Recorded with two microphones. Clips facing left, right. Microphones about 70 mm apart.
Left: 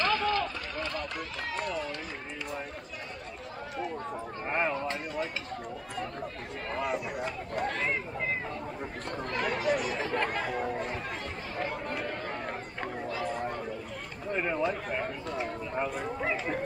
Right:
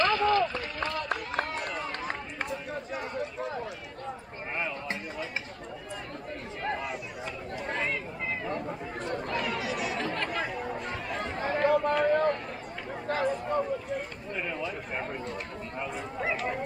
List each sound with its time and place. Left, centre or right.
0.0 s run: right
0.7 s run: right
4.5 s a sound: left
9.3 s chatter: left
11.4 s run: right
14.3 s a sound: left